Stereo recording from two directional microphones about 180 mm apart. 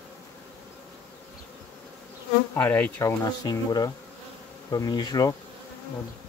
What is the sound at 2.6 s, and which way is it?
Speech, 10° left (ahead or behind).